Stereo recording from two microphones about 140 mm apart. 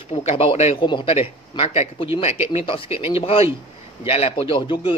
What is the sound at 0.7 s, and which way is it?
Speech, 35° left (ahead or behind).